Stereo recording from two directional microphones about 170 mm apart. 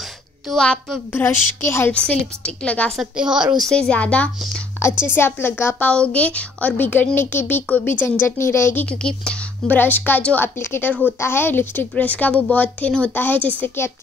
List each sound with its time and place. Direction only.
0.5 s a woman's voice: centre (ahead or behind)
3.0 s a woman's voice: 5° right (ahead or behind); by 8.8 s 15° left (ahead or behind)
8.8 s a woman's voice: 5° left (ahead or behind)